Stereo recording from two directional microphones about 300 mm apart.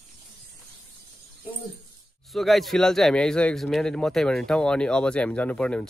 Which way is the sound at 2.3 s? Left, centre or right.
Centre.